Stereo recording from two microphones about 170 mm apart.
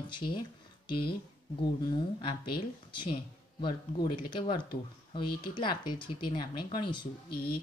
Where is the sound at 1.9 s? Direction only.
30° left (ahead or behind).